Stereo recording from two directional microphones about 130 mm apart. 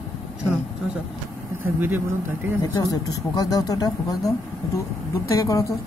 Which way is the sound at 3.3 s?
30° left (ahead or behind).